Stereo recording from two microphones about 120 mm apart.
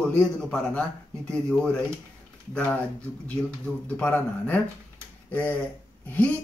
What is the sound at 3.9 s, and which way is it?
Speech, 15° left (ahead or behind).